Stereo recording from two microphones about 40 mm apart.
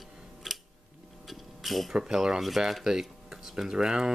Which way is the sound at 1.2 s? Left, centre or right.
Centre.